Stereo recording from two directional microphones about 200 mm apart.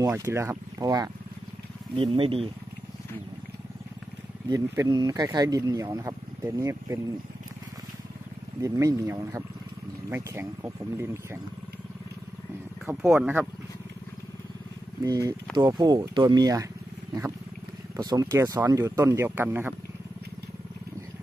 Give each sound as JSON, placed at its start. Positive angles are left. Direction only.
{"t": 0.0, "sound": "speech", "side_deg": -15}
{"t": 4.5, "sound": "speech", "side_deg": -20}
{"t": 8.5, "sound": "speech", "side_deg": -15}
{"t": 12.8, "sound": "speech", "side_deg": -5}
{"t": 15.0, "sound": "speech", "side_deg": -15}
{"t": 17.9, "sound": "speech", "side_deg": -15}